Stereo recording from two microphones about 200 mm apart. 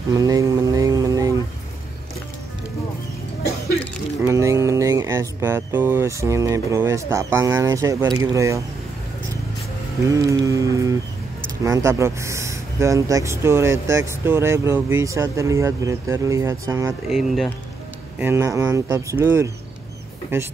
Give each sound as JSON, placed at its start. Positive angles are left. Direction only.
{"t": 0.1, "sound": "mantra", "side_deg": -15}
{"t": 4.2, "sound": "music", "side_deg": -15}
{"t": 6.2, "sound": "speech", "side_deg": -15}
{"t": 10.0, "sound": "speech", "side_deg": -15}
{"t": 17.1, "sound": "speech", "side_deg": 0}
{"t": 18.2, "sound": "speech", "side_deg": -15}